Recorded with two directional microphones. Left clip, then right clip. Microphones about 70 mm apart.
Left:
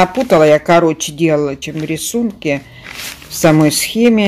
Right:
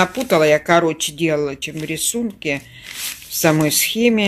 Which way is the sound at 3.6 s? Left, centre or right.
Left.